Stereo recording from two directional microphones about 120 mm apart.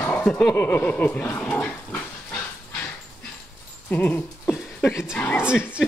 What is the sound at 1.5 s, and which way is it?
Pig, 10° left (ahead or behind).